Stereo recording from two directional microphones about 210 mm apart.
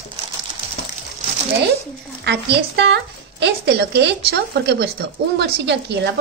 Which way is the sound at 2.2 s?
50° right (ahead or behind).